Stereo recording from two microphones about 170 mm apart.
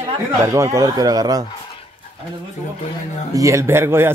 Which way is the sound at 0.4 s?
15° right (ahead or behind).